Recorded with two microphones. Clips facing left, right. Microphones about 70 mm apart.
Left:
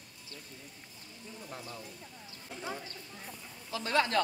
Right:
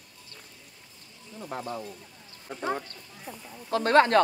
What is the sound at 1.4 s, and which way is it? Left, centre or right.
Speech, right.